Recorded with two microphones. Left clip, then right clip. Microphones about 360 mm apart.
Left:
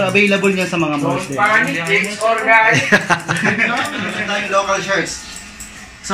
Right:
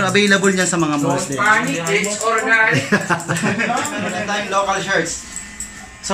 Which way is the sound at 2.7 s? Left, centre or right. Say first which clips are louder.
Left 4 dB; centre.